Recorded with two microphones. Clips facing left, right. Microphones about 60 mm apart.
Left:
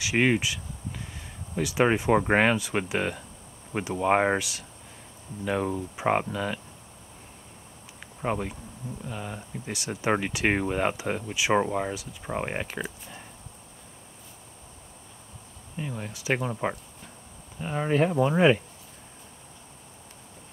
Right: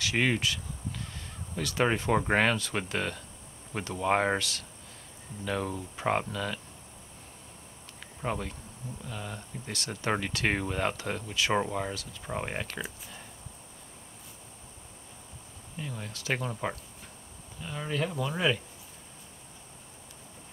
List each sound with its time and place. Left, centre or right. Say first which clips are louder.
0.0 s speech: left 4 dB; centre
8.2 s speech: left 4 dB; centre
15.7 s speech: left 4 dB; centre
17.6 s speech: left 8 dB; left